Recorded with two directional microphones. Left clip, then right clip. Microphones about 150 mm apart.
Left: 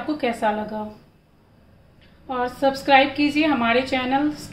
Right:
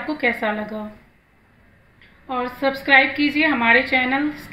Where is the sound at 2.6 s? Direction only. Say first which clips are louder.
Right 1 dB; 15° right (ahead or behind).